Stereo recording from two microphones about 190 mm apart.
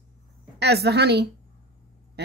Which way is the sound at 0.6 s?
60° right (ahead or behind).